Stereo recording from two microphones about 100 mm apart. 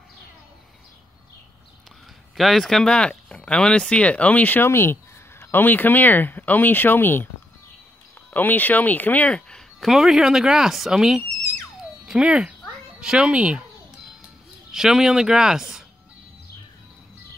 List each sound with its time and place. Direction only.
2.3 s speech: centre (ahead or behind); by 7.2 s 20° left (ahead or behind)
8.3 s speech: 15° left (ahead or behind)
9.8 s speech: 5° right (ahead or behind)
14.7 s speech: 5° right (ahead or behind)